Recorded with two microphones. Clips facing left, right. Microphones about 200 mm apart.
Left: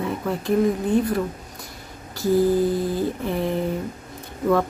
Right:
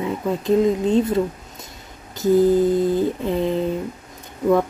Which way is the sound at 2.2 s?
20° right (ahead or behind).